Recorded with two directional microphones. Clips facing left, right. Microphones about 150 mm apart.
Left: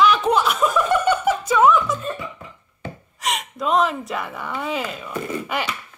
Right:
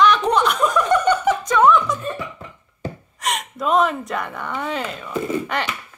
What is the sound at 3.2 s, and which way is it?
Speech, centre (ahead or behind).